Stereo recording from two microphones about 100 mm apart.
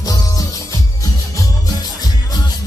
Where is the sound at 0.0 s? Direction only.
40° left (ahead or behind).